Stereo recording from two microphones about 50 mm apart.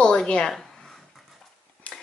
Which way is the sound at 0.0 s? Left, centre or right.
Centre.